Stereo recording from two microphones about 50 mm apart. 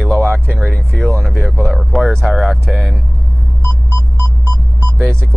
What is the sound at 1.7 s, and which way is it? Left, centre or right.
Speech, centre.